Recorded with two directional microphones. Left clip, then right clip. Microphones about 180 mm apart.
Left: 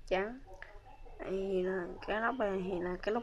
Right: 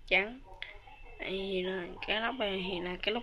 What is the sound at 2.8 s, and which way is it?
Speech, 15° right (ahead or behind).